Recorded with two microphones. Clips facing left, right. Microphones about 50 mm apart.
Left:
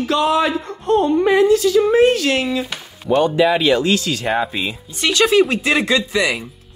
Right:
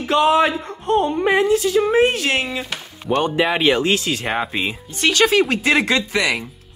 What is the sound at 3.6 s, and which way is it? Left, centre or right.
Speech, right.